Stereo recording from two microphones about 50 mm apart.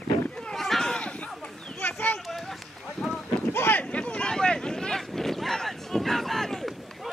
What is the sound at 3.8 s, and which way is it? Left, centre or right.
Boat, left.